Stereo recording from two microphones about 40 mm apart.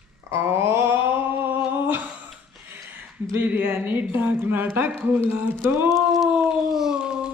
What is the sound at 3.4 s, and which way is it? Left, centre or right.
Speech, right.